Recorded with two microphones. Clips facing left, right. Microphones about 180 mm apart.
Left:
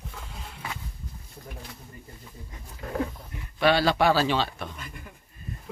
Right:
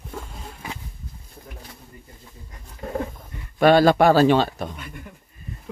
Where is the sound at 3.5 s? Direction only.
50° right (ahead or behind).